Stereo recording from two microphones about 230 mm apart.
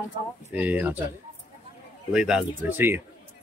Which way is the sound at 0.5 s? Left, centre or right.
Centre.